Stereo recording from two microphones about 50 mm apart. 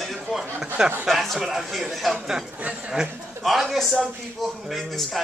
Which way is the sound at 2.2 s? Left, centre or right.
Centre.